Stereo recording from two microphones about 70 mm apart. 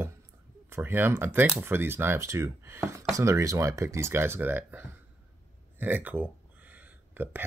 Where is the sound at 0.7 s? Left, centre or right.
Right.